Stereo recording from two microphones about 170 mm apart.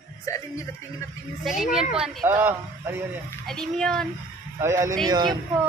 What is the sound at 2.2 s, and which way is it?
Speech, 15° right (ahead or behind).